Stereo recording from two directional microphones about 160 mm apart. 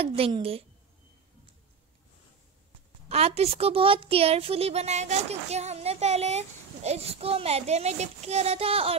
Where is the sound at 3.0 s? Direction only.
40° right (ahead or behind).